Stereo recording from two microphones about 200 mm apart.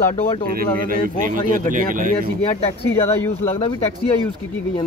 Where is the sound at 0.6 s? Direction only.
45° right (ahead or behind).